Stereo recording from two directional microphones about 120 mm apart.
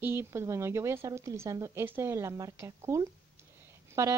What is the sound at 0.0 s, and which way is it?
Speech, 20° right (ahead or behind).